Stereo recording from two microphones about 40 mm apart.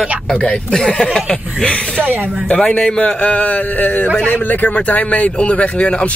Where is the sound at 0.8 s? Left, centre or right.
Centre.